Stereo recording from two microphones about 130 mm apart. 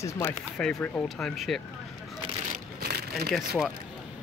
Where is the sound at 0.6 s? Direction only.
10° left (ahead or behind).